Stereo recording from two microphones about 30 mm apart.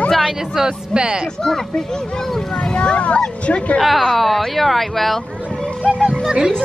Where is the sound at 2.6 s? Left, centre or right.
Left.